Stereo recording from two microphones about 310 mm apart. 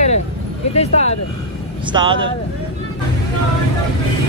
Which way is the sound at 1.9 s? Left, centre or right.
Centre.